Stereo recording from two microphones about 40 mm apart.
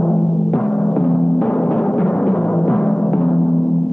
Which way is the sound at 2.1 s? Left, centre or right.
Centre.